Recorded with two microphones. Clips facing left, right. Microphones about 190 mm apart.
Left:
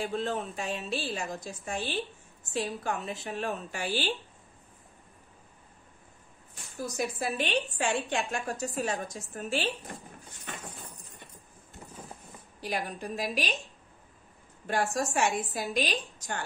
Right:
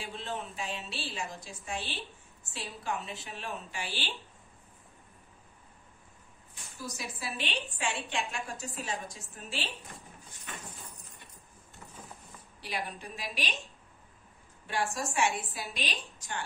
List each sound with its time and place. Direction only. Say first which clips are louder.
0.0 s a woman's voice: left 7 dB; 45° left (ahead or behind)
6.5 s a woman's voice: left 6 dB; 55° left (ahead or behind)
12.5 s a woman's voice: left 4 dB; 45° left (ahead or behind)
14.7 s a woman's voice: left 4 dB; 45° left (ahead or behind)